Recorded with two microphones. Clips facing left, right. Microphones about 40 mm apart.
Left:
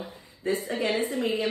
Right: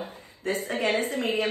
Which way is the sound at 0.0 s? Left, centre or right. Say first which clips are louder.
Left 1 dB; right.